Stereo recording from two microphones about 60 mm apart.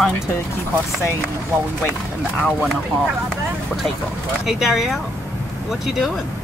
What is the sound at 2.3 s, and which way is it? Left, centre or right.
Speech, centre.